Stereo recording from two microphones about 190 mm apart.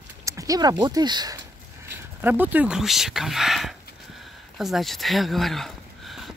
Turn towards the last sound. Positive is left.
turn(degrees=0)  # may be behind; listen again after turning